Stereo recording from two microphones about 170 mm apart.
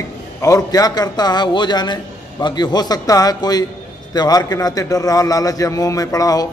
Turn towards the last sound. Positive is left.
turn(degrees=20)  # may be behind; listen again after turning